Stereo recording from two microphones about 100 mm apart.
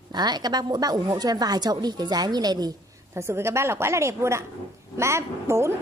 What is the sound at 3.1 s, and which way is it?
Speech, 25° right (ahead or behind).